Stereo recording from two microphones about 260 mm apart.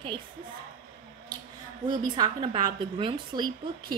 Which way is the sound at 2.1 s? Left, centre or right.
Centre.